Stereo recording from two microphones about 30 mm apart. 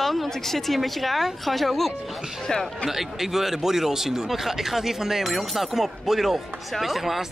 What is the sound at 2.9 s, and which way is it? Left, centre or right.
Speech, centre.